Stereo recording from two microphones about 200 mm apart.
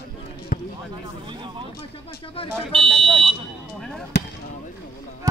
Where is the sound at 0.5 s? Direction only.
45° left (ahead or behind).